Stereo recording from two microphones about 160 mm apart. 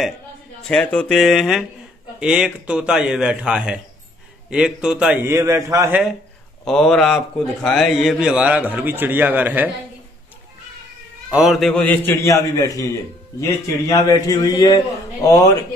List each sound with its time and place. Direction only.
0.7 s a man's voice: 5° left (ahead or behind); by 5.9 s 20° right (ahead or behind)
6.6 s a man's voice: 5° left (ahead or behind)
11.2 s a man's voice: 5° right (ahead or behind); by 15.5 s 20° left (ahead or behind)